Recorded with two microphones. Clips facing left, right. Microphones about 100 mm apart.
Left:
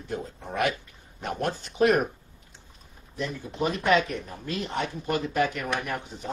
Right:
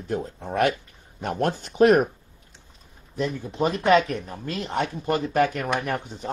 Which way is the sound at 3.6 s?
30° right (ahead or behind).